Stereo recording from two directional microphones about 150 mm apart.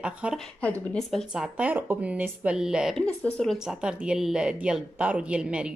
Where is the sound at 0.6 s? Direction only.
5° left (ahead or behind).